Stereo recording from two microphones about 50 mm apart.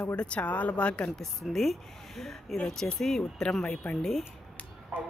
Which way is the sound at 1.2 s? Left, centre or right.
Centre.